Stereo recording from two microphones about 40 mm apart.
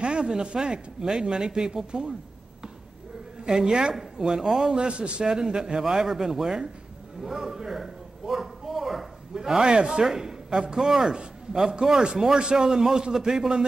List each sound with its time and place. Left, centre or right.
0.0 s speech: right
3.4 s speech: centre
4.7 s a man's voice: right
5.2 s speech: centre
7.2 s a sound: centre
10.0 s a man's voice: centre